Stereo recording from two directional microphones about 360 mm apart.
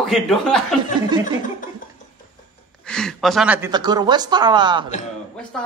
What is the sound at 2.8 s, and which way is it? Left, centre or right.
A woman's voice, centre.